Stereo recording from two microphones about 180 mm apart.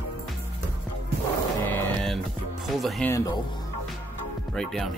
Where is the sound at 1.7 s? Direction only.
5° left (ahead or behind).